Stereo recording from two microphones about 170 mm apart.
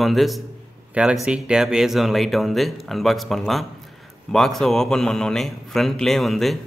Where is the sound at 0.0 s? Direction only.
Centre (ahead or behind).